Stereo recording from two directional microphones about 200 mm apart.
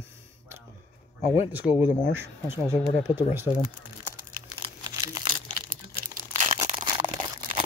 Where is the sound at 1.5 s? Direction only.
10° right (ahead or behind).